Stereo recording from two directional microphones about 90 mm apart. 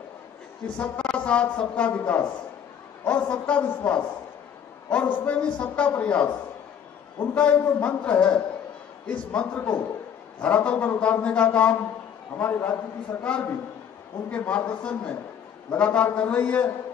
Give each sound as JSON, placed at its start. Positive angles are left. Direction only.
{"t": 0.7, "sound": "a man's voice", "side_deg": 15}
{"t": 14.3, "sound": "a man's voice", "side_deg": 15}